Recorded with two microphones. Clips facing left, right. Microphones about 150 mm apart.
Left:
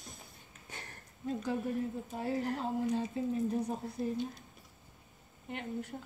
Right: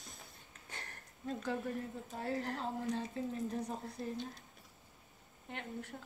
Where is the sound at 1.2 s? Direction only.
5° left (ahead or behind).